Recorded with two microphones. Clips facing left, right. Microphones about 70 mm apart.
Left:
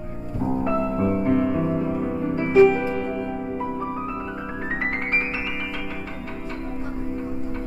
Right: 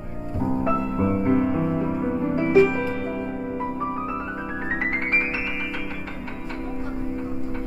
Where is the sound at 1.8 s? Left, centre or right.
Centre.